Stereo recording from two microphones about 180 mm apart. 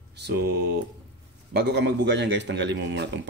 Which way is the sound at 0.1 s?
65° right (ahead or behind).